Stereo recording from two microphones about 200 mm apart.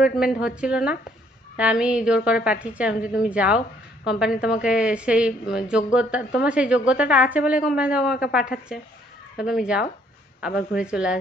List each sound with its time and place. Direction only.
0.0 s a woman's voice: 5° right (ahead or behind)
2.9 s a woman's voice: 45° left (ahead or behind)
3.2 s a woman's voice: 5° right (ahead or behind)